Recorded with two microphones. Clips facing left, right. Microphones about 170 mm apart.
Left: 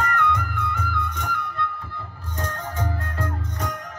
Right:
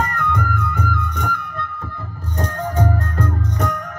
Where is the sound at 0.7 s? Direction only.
50° right (ahead or behind).